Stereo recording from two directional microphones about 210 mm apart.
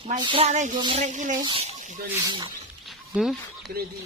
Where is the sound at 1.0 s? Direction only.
35° right (ahead or behind).